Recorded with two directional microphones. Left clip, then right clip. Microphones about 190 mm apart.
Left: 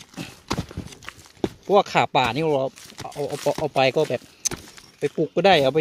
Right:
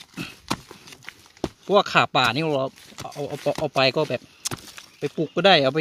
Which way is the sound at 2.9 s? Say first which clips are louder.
Left 2 dB; centre (ahead or behind).